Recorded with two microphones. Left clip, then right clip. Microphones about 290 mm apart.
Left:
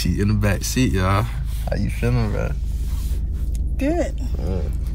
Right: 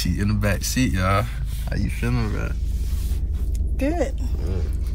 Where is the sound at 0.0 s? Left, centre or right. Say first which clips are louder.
Left 2 dB; centre.